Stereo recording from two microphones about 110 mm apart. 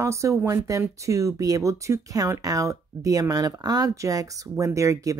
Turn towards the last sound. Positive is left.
turn(degrees=-30)  # may be behind; listen again after turning